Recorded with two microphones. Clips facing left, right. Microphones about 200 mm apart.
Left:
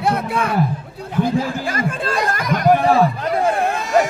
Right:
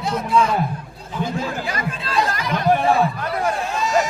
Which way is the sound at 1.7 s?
50° left (ahead or behind).